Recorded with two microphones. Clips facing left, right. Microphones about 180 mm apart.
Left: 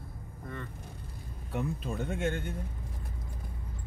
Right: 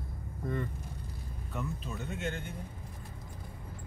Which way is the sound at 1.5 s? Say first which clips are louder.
Left 5 dB; 50° left (ahead or behind).